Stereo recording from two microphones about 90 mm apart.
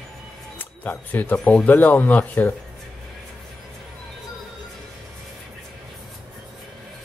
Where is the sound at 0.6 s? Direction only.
20° left (ahead or behind).